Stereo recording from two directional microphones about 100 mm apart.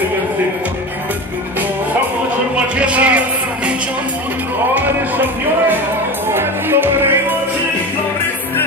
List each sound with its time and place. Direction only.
2.5 s music: 10° right (ahead or behind)
4.7 s music: 20° right (ahead or behind)